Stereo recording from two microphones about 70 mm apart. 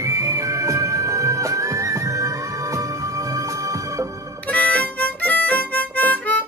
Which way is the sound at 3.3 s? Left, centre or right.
Right.